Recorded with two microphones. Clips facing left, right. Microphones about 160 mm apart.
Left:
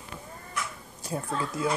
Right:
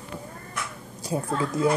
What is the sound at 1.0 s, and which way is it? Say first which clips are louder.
Speech: right 5 dB; 15° right (ahead or behind).